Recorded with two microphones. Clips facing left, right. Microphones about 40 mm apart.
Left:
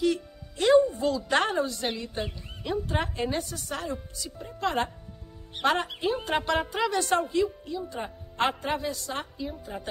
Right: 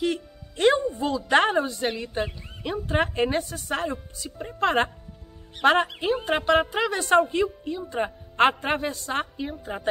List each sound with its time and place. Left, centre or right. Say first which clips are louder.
0.0 s music: even; right
0.7 s music: left 7 dB; centre
1.0 s a woman's voice: right 4 dB; right
3.0 s a woman's voice: right 6 dB; right
4.4 s a woman's voice: right 5 dB; right
5.9 s speech: right 3 dB; centre
7.1 s a woman's voice: right 5 dB; right